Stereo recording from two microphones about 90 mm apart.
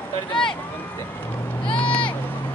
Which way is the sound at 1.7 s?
10° left (ahead or behind).